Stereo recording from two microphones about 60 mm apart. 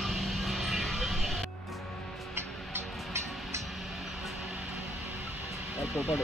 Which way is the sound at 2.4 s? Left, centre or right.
Right.